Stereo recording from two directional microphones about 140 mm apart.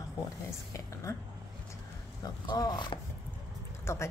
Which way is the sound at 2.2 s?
30° left (ahead or behind).